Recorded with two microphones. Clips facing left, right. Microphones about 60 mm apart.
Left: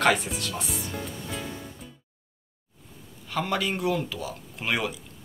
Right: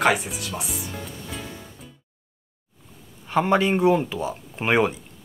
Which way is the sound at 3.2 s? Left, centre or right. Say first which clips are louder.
Right 8 dB; right.